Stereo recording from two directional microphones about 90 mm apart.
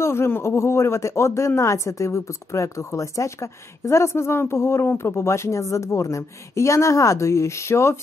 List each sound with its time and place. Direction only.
0.0 s a man's voice: 30° left (ahead or behind)